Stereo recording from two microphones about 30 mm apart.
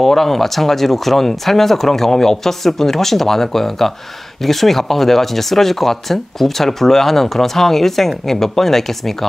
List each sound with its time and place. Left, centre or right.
0.0 s speech: centre